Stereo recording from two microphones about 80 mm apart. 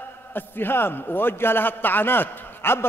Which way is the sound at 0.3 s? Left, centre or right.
Left.